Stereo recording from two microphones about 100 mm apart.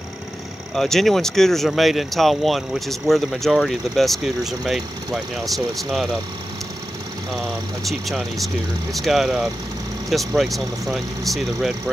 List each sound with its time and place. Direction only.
0.7 s speech: 5° left (ahead or behind)
8.9 s speech: centre (ahead or behind)